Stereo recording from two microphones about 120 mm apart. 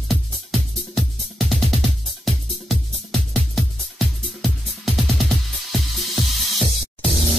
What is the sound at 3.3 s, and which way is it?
Music, centre (ahead or behind).